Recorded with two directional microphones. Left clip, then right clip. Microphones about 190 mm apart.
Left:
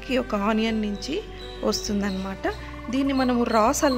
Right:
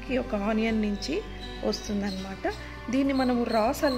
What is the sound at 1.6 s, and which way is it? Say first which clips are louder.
Speech: left 5 dB; 20° left (ahead or behind).